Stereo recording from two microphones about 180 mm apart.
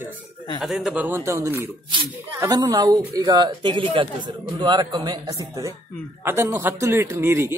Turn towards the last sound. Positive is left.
turn(degrees=-15)  # may be behind; listen again after turning